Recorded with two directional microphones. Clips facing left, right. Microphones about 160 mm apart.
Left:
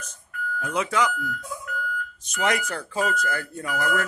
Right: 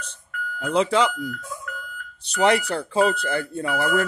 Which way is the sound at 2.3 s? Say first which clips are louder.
Right 6 dB; 30° right (ahead or behind).